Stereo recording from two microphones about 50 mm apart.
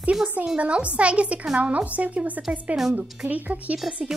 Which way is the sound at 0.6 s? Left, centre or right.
Right.